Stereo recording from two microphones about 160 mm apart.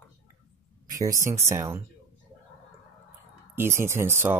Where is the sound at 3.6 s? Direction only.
15° right (ahead or behind).